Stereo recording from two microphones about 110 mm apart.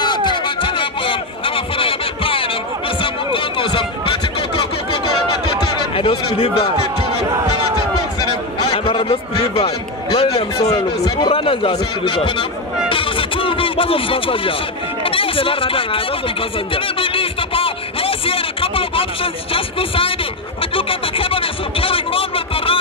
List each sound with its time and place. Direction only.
0.0 s a sound: 45° left (ahead or behind)
3.0 s music: 50° left (ahead or behind)
5.9 s a man's voice: 55° left (ahead or behind)
8.7 s a man's voice: 55° left (ahead or behind)
10.1 s a man's voice: 70° left (ahead or behind)
12.9 s music: 55° left (ahead or behind)
15.0 s speech: 55° left (ahead or behind)
16.7 s a sound: 55° left (ahead or behind)